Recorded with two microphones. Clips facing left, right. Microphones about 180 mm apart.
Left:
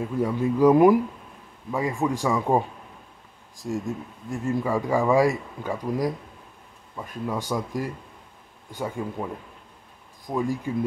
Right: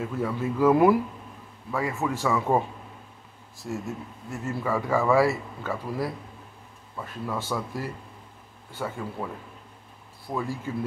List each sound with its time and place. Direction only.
0.0 s speech: 15° left (ahead or behind)